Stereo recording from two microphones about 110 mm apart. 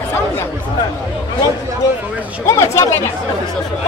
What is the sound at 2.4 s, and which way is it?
Speech, 25° left (ahead or behind).